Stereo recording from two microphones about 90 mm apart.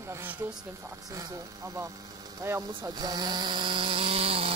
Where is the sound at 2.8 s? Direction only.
45° right (ahead or behind); by 4.5 s 90° right.